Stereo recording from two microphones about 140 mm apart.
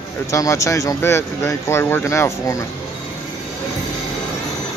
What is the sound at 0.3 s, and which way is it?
Speech, 20° left (ahead or behind).